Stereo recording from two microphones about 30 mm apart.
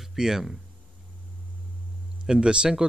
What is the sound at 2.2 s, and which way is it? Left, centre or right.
Speech, right.